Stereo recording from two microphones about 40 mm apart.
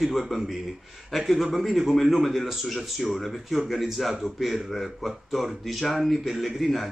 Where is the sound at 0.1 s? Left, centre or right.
Centre.